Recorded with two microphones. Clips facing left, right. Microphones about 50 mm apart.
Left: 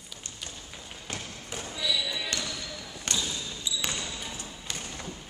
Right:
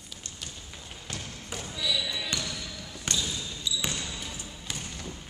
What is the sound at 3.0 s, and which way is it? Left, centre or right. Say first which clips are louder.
Basketball bounce: even; centre.